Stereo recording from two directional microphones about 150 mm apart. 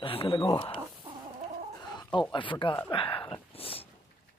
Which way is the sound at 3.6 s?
40° left (ahead or behind).